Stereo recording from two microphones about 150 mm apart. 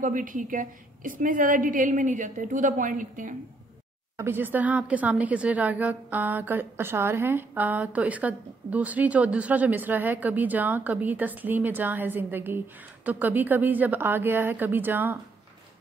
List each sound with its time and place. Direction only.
0.0 s a woman's voice: 60° right (ahead or behind)
4.2 s a woman's voice: 15° right (ahead or behind)